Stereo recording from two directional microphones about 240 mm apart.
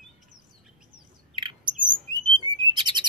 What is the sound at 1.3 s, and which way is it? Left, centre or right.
Bird, centre.